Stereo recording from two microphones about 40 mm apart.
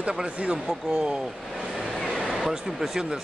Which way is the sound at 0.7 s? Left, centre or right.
Centre.